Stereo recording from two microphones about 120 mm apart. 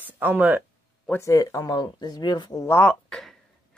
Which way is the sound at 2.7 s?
10° left (ahead or behind).